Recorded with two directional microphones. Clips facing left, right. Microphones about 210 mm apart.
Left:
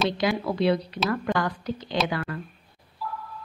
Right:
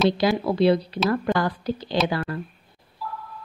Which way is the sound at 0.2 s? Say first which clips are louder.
Right 4 dB; 35° right (ahead or behind).